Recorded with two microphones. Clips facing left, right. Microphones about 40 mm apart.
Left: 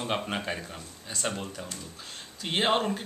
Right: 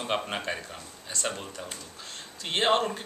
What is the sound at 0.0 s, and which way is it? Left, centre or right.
Speech, centre.